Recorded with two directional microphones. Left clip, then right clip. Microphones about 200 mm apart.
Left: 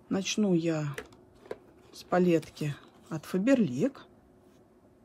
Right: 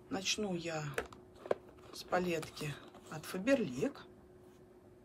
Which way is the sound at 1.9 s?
30° left (ahead or behind).